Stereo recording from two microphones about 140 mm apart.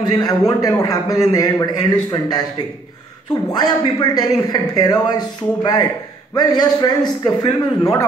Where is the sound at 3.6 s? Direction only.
30° left (ahead or behind).